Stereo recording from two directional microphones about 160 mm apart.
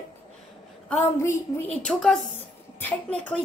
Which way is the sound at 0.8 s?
15° left (ahead or behind).